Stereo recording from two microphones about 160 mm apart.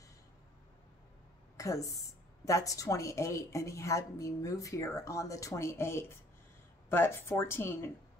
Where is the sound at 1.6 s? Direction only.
20° left (ahead or behind).